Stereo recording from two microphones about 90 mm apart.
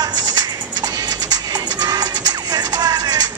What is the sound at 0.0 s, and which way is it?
Music, 50° right (ahead or behind).